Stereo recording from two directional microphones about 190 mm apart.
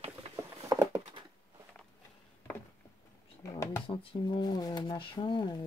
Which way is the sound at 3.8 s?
25° left (ahead or behind).